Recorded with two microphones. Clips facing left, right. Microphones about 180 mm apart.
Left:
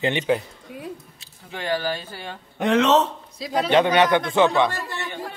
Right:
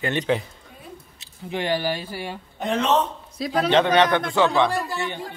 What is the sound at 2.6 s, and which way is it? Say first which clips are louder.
Speech: left 4 dB; 90° left.